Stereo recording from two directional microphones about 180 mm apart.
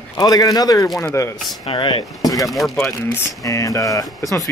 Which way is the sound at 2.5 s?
Centre (ahead or behind).